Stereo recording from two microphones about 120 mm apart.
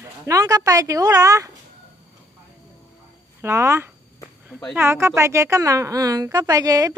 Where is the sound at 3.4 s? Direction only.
20° right (ahead or behind).